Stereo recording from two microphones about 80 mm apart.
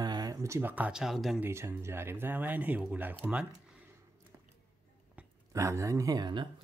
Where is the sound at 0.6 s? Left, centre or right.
Right.